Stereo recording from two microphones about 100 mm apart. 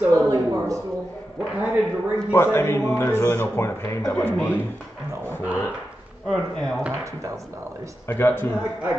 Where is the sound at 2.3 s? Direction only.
25° left (ahead or behind).